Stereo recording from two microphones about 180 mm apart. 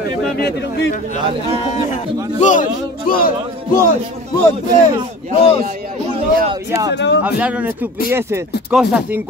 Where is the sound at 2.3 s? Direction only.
45° left (ahead or behind).